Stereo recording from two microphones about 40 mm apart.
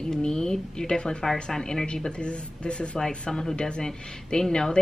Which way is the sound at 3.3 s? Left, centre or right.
Centre.